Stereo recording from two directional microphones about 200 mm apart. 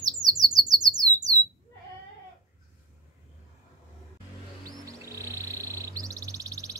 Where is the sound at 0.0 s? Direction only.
20° right (ahead or behind).